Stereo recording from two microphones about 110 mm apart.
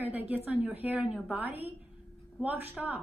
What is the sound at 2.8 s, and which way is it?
Speech, centre (ahead or behind).